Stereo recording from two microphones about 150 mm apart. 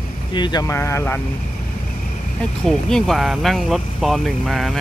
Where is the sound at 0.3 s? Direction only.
30° left (ahead or behind).